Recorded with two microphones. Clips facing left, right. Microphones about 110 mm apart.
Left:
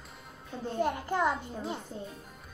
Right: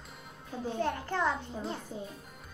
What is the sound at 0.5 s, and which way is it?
Speech, centre (ahead or behind).